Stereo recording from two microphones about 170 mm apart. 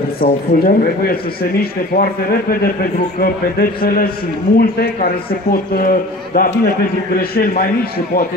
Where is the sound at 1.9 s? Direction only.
60° left (ahead or behind).